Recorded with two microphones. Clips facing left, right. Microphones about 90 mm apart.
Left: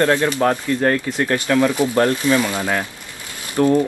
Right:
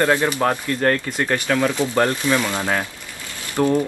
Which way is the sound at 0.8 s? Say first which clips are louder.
Left 1 dB; 5° left (ahead or behind).